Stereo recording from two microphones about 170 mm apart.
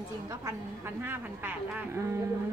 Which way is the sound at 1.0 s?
10° right (ahead or behind).